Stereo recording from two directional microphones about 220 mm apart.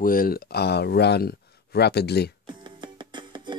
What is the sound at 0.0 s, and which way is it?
Speech, 40° left (ahead or behind).